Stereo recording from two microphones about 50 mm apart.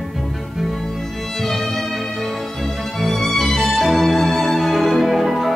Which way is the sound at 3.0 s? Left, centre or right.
Centre.